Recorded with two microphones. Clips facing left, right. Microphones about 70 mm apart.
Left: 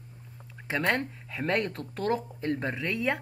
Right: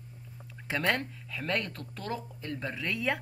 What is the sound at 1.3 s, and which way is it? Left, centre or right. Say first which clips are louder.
Speech: left 4 dB; left.